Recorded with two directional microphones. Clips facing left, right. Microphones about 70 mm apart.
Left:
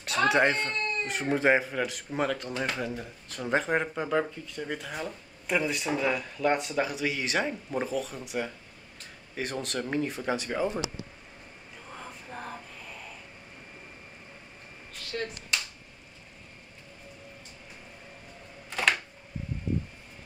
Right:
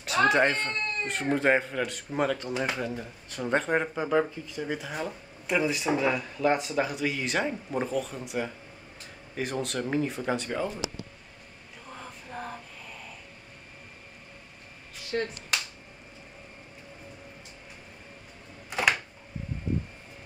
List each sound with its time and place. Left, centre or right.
0.3 s speech: centre
11.9 s music: centre
15.1 s speech: right
18.7 s a sound: centre